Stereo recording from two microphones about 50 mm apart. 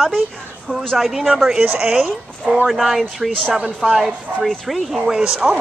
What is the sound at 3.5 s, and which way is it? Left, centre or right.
Speech, centre.